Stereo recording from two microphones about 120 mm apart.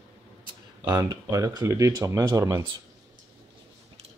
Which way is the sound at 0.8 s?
35° right (ahead or behind).